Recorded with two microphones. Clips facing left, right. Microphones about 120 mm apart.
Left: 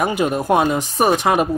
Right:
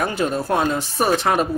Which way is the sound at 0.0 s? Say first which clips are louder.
Left 3 dB; 15° left (ahead or behind).